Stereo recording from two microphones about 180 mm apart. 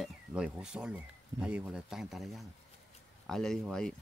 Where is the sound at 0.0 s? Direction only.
5° right (ahead or behind).